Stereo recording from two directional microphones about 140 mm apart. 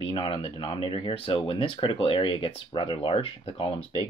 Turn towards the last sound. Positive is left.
turn(degrees=40)  # may be behind; listen again after turning